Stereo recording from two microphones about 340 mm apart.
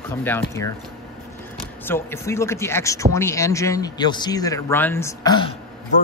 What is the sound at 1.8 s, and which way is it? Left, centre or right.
A man's voice, centre.